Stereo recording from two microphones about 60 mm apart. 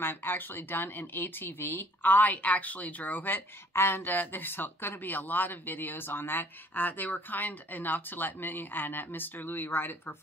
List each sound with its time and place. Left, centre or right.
0.0 s speech: left